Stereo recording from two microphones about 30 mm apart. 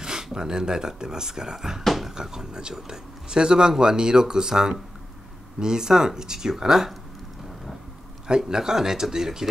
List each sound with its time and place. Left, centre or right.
0.0 s speech: right
8.3 s speech: right